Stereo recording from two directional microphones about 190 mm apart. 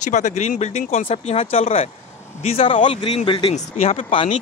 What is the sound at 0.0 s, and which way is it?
Speech, 40° left (ahead or behind).